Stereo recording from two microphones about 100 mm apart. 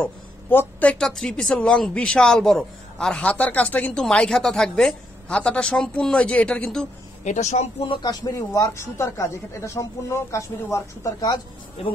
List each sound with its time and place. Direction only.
0.0 s speech: 20° left (ahead or behind)
8.0 s speech: 40° left (ahead or behind)
11.8 s speech: 90° left